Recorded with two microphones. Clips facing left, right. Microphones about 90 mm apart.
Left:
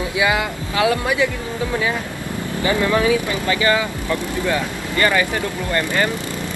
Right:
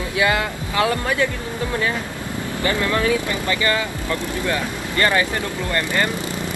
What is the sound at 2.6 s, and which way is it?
Speech, 15° left (ahead or behind).